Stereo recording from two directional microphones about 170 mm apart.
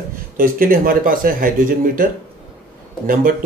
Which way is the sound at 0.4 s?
55° right (ahead or behind).